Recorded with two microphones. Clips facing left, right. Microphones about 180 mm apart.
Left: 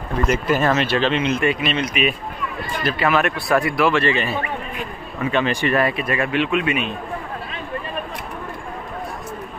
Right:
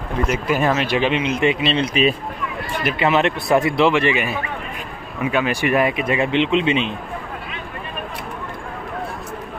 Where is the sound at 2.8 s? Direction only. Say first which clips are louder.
Right 1 dB; 20° right (ahead or behind).